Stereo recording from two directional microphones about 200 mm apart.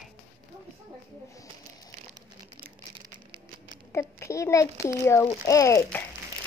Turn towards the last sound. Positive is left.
turn(degrees=15)  # may be behind; listen again after turning